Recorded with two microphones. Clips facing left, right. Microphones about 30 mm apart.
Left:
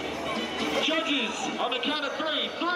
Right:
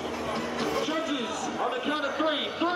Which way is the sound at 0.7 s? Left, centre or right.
Left.